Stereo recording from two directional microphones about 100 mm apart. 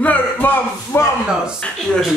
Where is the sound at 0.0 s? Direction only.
15° left (ahead or behind).